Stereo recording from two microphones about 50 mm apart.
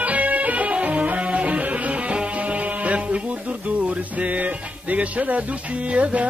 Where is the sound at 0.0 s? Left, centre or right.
Right.